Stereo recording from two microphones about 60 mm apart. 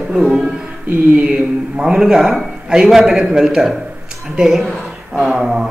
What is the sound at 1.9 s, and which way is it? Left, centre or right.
Speech, centre.